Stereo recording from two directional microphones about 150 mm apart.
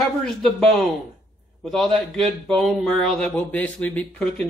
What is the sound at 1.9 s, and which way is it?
A woman's voice, 5° left (ahead or behind).